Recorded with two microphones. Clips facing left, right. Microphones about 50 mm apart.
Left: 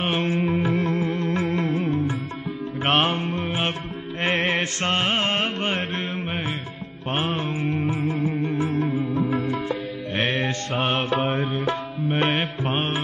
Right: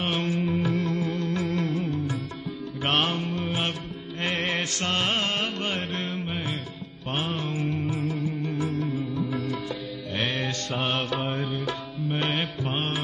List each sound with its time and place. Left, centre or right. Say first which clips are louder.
0.0 s music: left 4 dB; left
7.1 s music: left 4 dB; left
11.3 s tabla: left 5 dB; left
12.2 s music: left 5 dB; left